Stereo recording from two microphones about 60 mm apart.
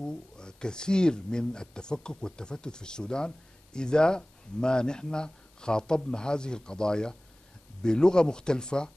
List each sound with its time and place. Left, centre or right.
0.0 s speech: centre